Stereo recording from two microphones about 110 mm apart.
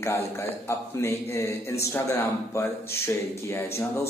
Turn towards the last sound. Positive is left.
turn(degrees=25)  # may be behind; listen again after turning